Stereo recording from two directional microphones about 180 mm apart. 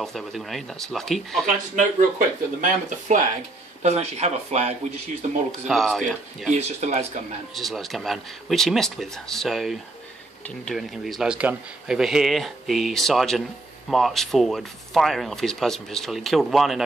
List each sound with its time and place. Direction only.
0.0 s speech: centre (ahead or behind)
1.4 s speech: 45° right (ahead or behind)
5.7 s speech: centre (ahead or behind)
6.5 s speech: 40° right (ahead or behind)
7.5 s speech: centre (ahead or behind)